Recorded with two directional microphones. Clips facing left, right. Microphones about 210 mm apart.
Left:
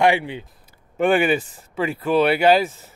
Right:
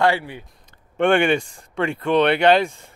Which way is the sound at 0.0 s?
20° left (ahead or behind).